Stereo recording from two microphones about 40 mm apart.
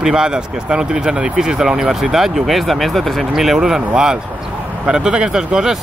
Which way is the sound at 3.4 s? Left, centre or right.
Centre.